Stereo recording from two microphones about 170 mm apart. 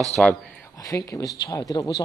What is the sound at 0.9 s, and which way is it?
Speech, 20° left (ahead or behind).